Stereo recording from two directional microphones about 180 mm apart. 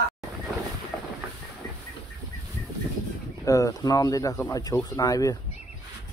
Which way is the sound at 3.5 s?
20° left (ahead or behind).